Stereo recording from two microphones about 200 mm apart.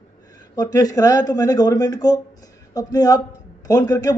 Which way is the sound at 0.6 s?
20° left (ahead or behind).